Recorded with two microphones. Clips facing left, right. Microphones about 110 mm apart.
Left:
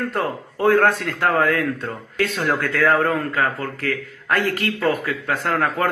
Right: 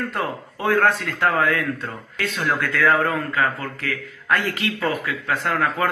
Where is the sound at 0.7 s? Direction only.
50° left (ahead or behind).